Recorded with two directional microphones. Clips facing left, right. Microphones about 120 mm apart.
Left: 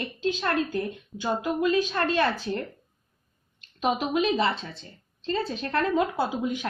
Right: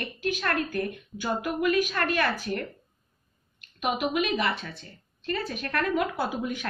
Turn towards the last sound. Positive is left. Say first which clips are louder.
# left 2 dB
turn(degrees=20)  # may be behind; listen again after turning